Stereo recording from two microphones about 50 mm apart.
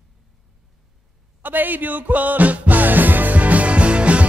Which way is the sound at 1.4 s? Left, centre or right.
Right.